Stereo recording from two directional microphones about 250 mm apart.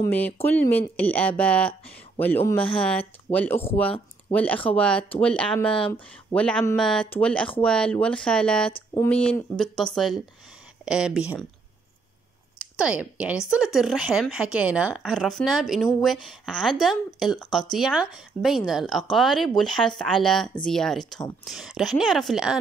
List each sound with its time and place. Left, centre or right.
0.0 s a woman's voice: centre
8.7 s speech: left
9.1 s a woman's voice: centre
12.7 s a woman's voice: centre